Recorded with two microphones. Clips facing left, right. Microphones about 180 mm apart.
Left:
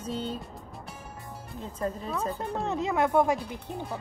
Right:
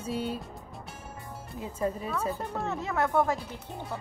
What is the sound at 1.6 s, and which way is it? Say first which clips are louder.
Speech: right 2 dB; 10° right (ahead or behind).